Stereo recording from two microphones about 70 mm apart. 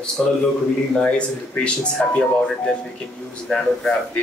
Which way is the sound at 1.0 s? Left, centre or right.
Centre.